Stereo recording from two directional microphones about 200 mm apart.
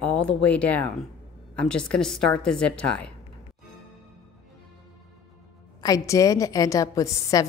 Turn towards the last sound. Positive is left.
turn(degrees=15)  # may be behind; listen again after turning